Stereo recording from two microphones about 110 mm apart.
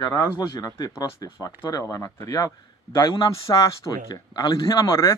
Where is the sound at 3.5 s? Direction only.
30° left (ahead or behind).